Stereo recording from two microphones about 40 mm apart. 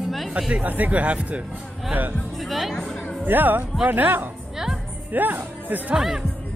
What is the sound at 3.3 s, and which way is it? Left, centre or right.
Speech, right.